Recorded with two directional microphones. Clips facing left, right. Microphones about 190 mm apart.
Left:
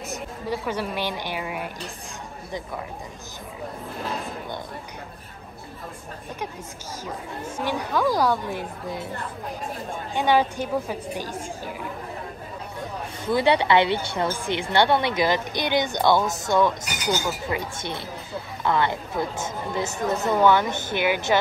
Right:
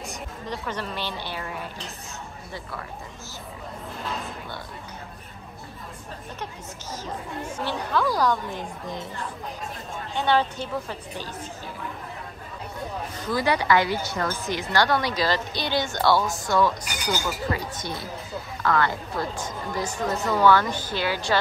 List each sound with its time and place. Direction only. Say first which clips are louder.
0.1 s a woman's voice: left 8 dB; 10° left (ahead or behind)
7.5 s speech: left 1 dB; 10° left (ahead or behind)
10.1 s speech: left 2 dB; 10° left (ahead or behind)
13.3 s a woman's voice: left 3 dB; 25° left (ahead or behind)